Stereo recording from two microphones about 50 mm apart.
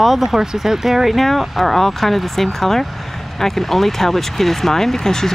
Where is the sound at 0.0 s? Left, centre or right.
Centre.